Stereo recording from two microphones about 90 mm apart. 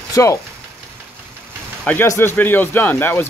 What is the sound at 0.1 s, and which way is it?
Speech, 35° left (ahead or behind).